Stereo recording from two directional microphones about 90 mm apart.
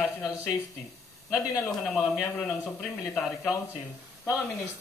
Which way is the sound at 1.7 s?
Centre (ahead or behind).